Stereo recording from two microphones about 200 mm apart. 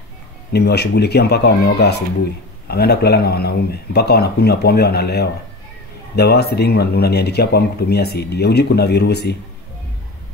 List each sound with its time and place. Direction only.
0.5 s speech: 55° left (ahead or behind)